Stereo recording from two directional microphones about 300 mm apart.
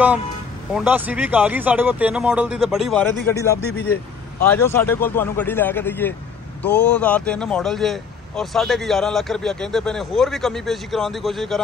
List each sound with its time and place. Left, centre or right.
0.7 s speech: centre
3.7 s speech: left
4.5 s speech: centre